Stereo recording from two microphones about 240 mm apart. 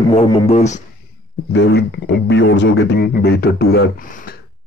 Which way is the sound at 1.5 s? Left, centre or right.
Left.